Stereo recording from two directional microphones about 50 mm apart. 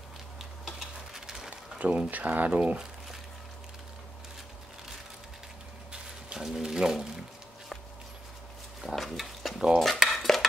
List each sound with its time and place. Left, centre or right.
0.7 s stir: centre
1.8 s speech: right
5.9 s a sound: centre
8.9 s a sound: centre
9.8 s cutlery: centre
10.0 s stir: centre